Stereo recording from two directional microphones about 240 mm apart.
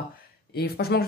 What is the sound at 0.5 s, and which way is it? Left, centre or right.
Speech, left.